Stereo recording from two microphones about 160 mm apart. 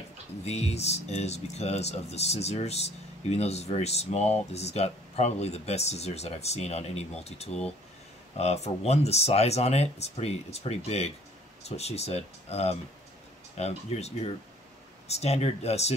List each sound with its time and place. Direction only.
0.5 s speech: 40° left (ahead or behind)